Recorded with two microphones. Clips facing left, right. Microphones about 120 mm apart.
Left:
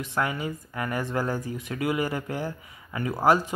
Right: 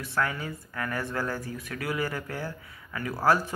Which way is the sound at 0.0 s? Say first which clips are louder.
Left 2 dB; 20° left (ahead or behind).